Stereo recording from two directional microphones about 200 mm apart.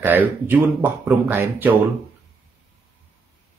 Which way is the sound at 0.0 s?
10° right (ahead or behind).